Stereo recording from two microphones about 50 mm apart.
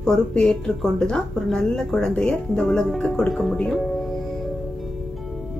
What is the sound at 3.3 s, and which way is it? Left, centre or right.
Speech, centre.